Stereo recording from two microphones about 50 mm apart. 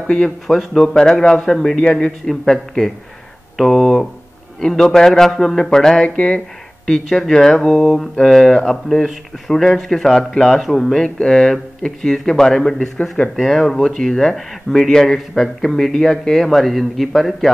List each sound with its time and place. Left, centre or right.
0.0 s speech: centre
0.5 s a man's voice: centre
0.9 s a man's voice: centre
6.0 s speech: left
6.9 s a man's voice: centre